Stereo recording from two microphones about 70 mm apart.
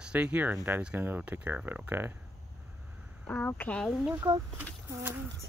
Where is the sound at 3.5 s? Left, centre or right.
Left.